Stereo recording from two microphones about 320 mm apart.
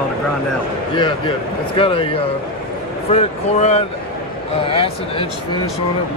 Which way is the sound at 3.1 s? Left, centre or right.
Centre.